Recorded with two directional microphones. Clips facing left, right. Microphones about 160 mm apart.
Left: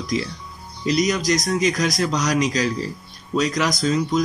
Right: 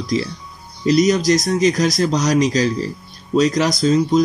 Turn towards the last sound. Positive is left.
turn(degrees=-30)  # may be behind; listen again after turning